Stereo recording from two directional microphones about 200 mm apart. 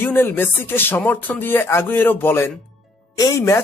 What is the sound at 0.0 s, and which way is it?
Speech, 10° left (ahead or behind).